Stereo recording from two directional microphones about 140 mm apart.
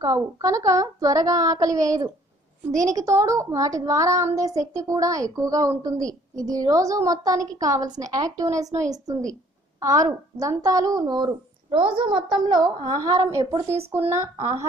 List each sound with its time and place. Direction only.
0.0 s a child's voice: 25° right (ahead or behind)